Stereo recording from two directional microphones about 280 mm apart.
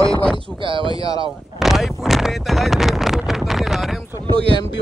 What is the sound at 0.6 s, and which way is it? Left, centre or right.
Speech, centre.